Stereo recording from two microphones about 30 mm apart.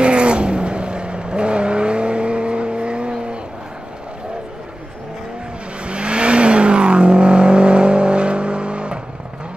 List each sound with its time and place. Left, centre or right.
0.0 s cat: right
5.9 s vehicle: right